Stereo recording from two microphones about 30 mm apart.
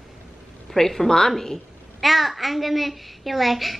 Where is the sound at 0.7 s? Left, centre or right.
Centre.